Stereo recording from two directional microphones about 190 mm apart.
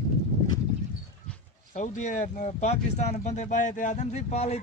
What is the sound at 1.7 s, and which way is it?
Speech, 40° left (ahead or behind).